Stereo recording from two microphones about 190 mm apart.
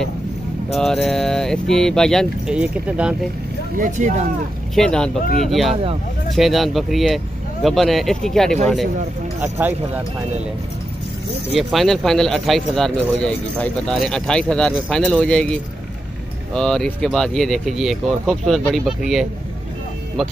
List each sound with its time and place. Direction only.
0.7 s speech: centre (ahead or behind)
3.7 s speech: 40° right (ahead or behind)
4.7 s speech: 5° left (ahead or behind)
9.4 s speech: 10° right (ahead or behind)
11.5 s speech: centre (ahead or behind)